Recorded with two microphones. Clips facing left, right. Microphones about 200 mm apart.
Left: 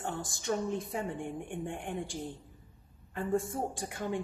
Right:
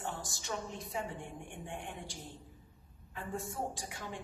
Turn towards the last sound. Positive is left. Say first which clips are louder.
# left 5 dB
turn(degrees=55)  # may be behind; listen again after turning